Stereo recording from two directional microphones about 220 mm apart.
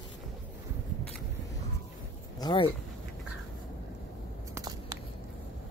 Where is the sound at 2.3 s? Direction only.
20° left (ahead or behind).